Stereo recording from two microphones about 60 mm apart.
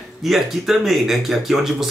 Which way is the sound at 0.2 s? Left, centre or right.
Centre.